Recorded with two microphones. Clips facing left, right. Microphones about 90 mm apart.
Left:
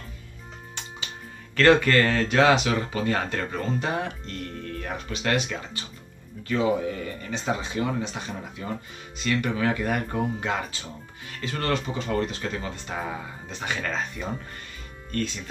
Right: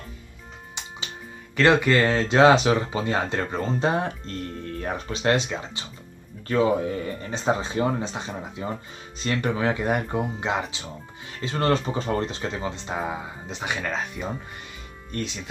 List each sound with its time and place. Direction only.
0.8 s music: 15° right (ahead or behind)
1.6 s speech: 15° right (ahead or behind)
7.2 s speech: 35° right (ahead or behind); by 15.3 s 20° right (ahead or behind)